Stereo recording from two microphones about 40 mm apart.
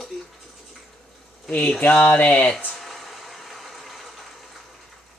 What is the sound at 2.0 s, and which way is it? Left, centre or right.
Speech, left.